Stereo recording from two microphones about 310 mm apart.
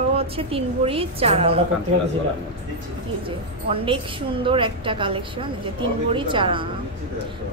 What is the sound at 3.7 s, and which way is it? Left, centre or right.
A woman's voice, centre.